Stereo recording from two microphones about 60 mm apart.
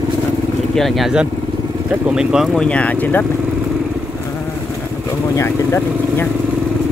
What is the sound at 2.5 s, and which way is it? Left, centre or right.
Speech, centre.